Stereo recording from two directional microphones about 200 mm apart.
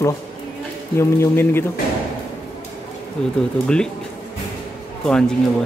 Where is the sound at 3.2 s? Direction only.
5° left (ahead or behind).